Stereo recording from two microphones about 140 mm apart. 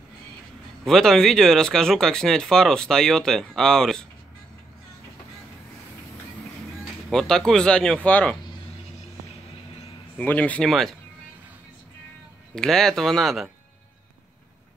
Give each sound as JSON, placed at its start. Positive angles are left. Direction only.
{"t": 0.8, "sound": "speech", "side_deg": 5}
{"t": 7.1, "sound": "speech", "side_deg": 5}
{"t": 10.1, "sound": "speech", "side_deg": 10}
{"t": 12.5, "sound": "speech", "side_deg": 5}